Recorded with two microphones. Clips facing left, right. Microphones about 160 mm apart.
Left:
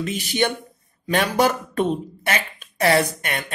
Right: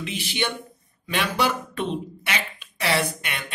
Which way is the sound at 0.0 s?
45° left (ahead or behind).